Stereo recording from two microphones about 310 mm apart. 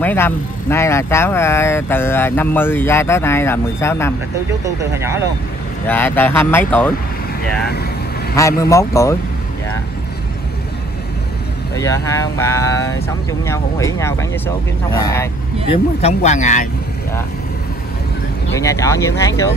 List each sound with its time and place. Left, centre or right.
0.0 s speech: centre
4.9 s speech: centre
5.9 s speech: centre
8.4 s speech: centre
11.7 s speech: centre
18.6 s speech: centre